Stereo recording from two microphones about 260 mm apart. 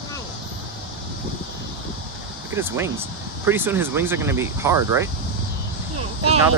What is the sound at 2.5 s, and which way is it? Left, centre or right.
Speech, centre.